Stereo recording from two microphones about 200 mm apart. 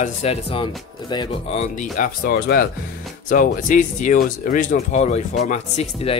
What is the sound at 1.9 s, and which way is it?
Speech, 45° left (ahead or behind).